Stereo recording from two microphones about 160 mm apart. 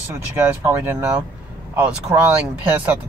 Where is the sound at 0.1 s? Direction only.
15° right (ahead or behind).